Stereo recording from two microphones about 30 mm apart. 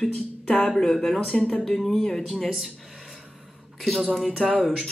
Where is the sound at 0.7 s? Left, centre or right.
Centre.